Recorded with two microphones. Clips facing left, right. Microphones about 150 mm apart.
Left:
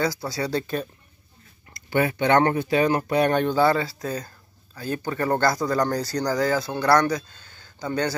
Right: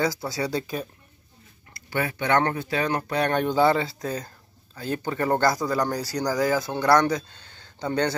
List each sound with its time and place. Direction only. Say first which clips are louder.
0.2 s speech: left 1 dB; 20° right (ahead or behind)
1.7 s speech: left 5 dB; 25° left (ahead or behind)
3.4 s speech: even; 20° right (ahead or behind)